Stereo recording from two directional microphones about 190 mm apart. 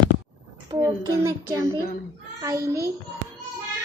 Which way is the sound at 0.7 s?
15° right (ahead or behind).